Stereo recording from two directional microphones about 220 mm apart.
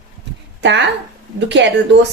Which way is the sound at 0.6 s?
55° right (ahead or behind).